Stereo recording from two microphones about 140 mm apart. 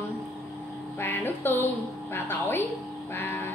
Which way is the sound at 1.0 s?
15° left (ahead or behind).